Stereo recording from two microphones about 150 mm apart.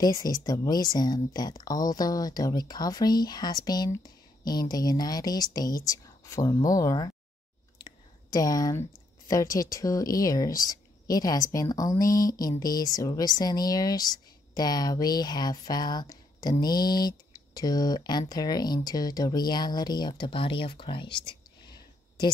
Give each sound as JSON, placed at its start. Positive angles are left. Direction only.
{"t": 0.0, "sound": "a woman's voice", "side_deg": 25}
{"t": 7.8, "sound": "a sound", "side_deg": 25}
{"t": 9.3, "sound": "a woman's voice", "side_deg": 20}